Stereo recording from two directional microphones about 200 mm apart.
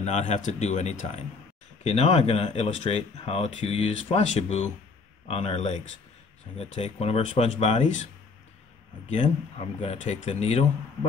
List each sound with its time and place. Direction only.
0.0 s speech: 35° left (ahead or behind)
9.1 s speech: 30° left (ahead or behind)